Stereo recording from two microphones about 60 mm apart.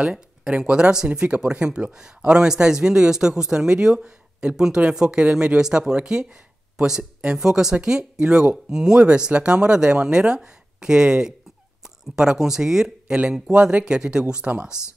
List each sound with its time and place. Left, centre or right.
0.0 s speech: centre